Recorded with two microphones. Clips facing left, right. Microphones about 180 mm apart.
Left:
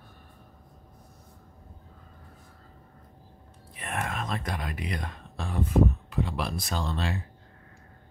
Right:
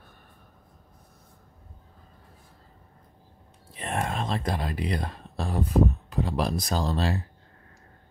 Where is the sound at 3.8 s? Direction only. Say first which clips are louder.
Right 4 dB; 30° right (ahead or behind).